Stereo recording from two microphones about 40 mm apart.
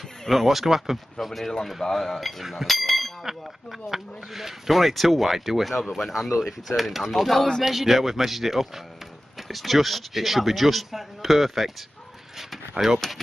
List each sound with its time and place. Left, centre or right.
0.3 s speech: centre
12.8 s speech: right